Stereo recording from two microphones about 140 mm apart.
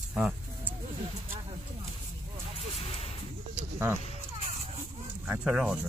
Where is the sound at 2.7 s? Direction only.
45° left (ahead or behind).